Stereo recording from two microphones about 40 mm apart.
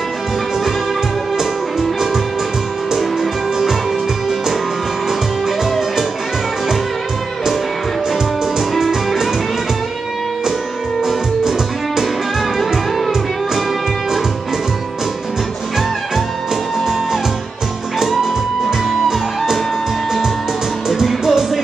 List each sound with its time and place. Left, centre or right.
1.4 s music: centre
8.1 s music: centre
20.9 s music: centre